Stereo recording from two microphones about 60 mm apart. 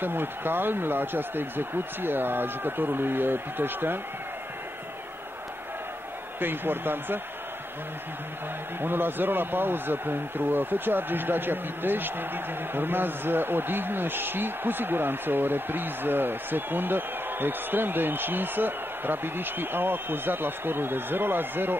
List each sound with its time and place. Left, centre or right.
0.0 s a man's voice: right
6.4 s a man's voice: right
8.8 s a man's voice: right